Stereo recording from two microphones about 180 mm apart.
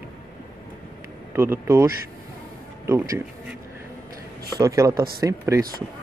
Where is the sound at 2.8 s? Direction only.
15° right (ahead or behind).